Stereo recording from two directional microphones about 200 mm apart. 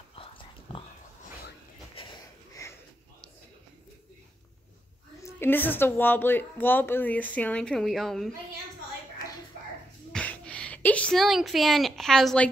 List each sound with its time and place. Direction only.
2.6 s sniff: 15° left (ahead or behind)
5.2 s a woman's voice: 10° left (ahead or behind)
10.1 s a sound: 5° left (ahead or behind)